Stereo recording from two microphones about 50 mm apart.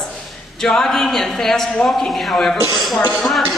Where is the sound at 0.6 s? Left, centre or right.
Centre.